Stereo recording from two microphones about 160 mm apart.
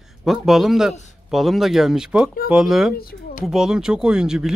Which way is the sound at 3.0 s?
70° left (ahead or behind).